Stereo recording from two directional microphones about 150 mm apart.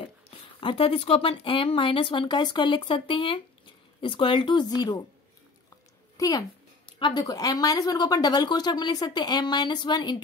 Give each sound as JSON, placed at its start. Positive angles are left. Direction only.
{"t": 0.6, "sound": "speech", "side_deg": 35}
{"t": 6.1, "sound": "a woman's voice", "side_deg": 25}